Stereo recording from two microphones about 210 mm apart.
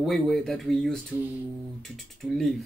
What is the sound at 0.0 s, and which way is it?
Speech, centre (ahead or behind).